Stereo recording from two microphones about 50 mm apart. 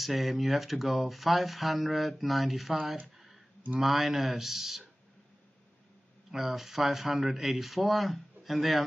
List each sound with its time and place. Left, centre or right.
0.0 s speech: centre
6.3 s speech: centre